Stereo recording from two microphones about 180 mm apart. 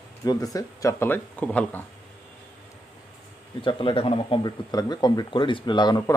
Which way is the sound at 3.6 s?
30° left (ahead or behind).